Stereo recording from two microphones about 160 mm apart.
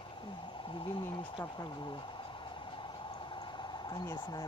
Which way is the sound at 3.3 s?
25° left (ahead or behind).